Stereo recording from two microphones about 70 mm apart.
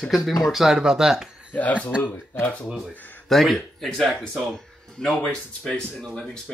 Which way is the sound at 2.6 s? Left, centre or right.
Centre.